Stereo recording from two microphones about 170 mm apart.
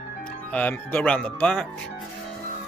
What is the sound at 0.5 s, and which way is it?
Speech, 10° left (ahead or behind).